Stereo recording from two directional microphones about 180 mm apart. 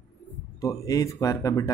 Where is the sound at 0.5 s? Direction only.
20° left (ahead or behind).